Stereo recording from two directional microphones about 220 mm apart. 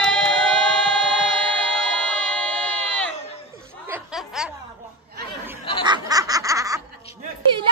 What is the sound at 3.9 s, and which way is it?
Snicker, 5° right (ahead or behind).